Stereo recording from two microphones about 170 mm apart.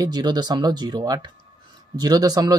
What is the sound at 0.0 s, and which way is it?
Speech, 25° right (ahead or behind).